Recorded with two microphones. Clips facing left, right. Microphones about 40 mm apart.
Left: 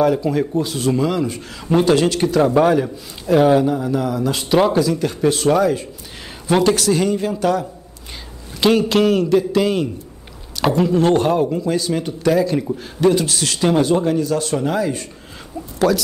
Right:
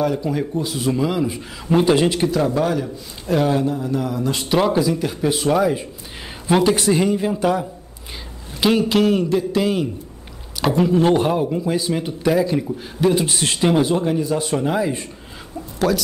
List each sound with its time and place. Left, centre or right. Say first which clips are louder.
0.0 s speech: left 4 dB; centre
1.7 s speech: left 1 dB; centre
2.6 s a man's voice: left 5 dB; centre
3.8 s speech: left 2 dB; centre
4.7 s speech: left 2 dB; centre
8.5 s speech: left 2 dB; centre
13.1 s a man's voice: left 1 dB; right
13.7 s speech: left 2 dB; centre
14.2 s speech: left 1 dB; centre
15.8 s speech: left 2 dB; centre